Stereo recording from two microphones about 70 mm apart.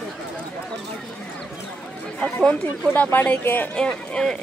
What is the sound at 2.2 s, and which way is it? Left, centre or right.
Speech, centre.